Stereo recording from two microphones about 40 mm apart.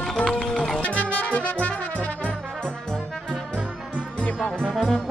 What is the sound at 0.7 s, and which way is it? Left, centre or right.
Brass instrument, left.